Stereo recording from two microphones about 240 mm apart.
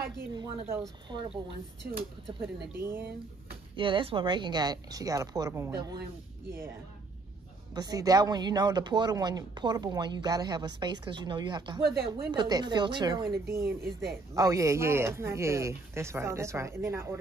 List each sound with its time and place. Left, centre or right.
0.4 s speech: centre
3.7 s speech: right
7.7 s speech: centre